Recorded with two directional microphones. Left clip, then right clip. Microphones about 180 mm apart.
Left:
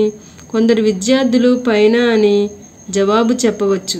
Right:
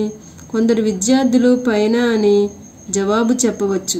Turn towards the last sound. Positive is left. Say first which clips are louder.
# left 3 dB
turn(degrees=25)  # may be behind; listen again after turning